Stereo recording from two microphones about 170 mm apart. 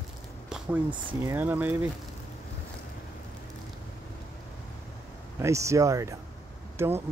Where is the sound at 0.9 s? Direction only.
30° right (ahead or behind).